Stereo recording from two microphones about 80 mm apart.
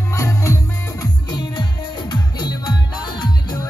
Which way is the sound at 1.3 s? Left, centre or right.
Left.